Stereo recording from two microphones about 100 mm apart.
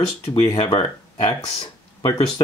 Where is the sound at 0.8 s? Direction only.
50° left (ahead or behind).